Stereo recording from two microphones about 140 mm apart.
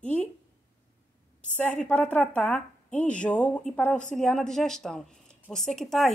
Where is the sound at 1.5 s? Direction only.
10° left (ahead or behind).